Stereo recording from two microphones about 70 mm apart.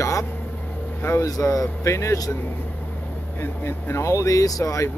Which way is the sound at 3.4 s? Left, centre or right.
Left.